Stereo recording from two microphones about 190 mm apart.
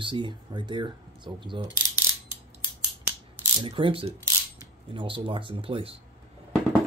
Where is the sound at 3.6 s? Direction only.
25° right (ahead or behind).